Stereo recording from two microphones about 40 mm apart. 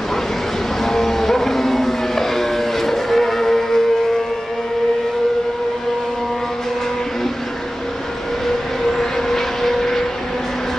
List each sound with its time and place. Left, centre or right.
0.8 s vehicle: centre
8.8 s vehicle: centre